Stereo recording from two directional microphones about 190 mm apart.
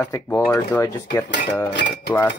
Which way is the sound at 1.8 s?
65° left (ahead or behind).